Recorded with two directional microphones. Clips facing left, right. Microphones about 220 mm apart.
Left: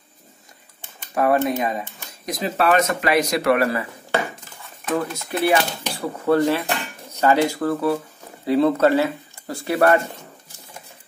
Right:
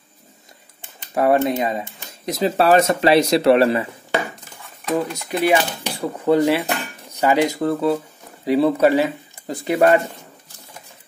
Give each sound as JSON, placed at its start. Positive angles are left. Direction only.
{"t": 0.9, "sound": "speech", "side_deg": -25}
{"t": 4.8, "sound": "speech", "side_deg": -15}
{"t": 8.5, "sound": "speech", "side_deg": -10}